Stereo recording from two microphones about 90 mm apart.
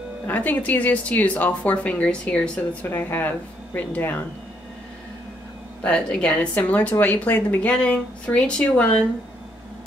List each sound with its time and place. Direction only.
0.3 s speech: 20° left (ahead or behind)
5.8 s speech: 10° left (ahead or behind)